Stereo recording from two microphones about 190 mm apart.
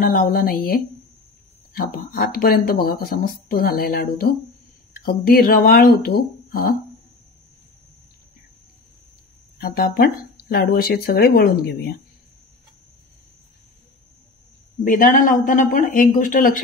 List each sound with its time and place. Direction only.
0.0 s speech: 50° left (ahead or behind)
9.6 s speech: 50° left (ahead or behind)
14.9 s speech: 45° left (ahead or behind)